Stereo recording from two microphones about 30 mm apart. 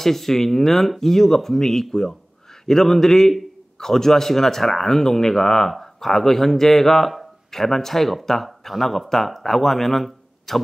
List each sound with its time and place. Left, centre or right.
0.0 s speech: centre